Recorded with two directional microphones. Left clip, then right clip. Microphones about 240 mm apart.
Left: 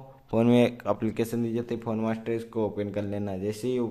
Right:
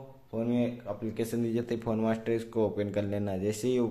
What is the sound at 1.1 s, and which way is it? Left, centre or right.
Speech, centre.